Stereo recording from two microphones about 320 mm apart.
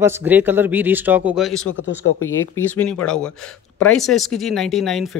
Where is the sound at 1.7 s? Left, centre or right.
Left.